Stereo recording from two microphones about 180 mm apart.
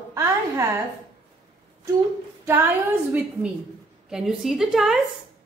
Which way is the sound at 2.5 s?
10° right (ahead or behind).